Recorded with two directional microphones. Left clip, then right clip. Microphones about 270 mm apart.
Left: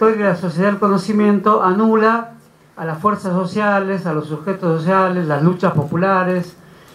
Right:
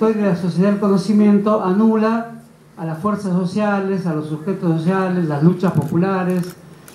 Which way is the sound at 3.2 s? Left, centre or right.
Left.